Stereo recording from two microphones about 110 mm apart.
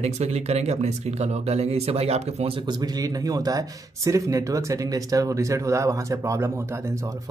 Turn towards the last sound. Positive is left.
turn(degrees=-30)  # may be behind; listen again after turning